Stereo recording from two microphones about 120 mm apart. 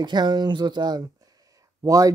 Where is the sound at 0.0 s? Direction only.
35° right (ahead or behind).